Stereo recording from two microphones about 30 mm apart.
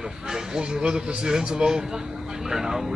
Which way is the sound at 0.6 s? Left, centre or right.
Right.